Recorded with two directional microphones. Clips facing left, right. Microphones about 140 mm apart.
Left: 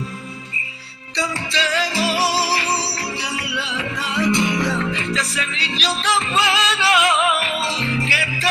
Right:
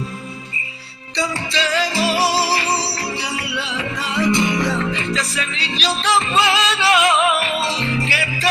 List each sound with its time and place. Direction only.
1.1 s music: 35° right (ahead or behind)